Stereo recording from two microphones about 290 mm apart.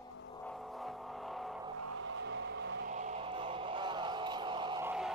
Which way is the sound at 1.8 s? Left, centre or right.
Right.